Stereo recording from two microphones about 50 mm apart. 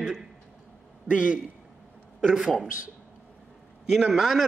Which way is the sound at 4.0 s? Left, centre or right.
Centre.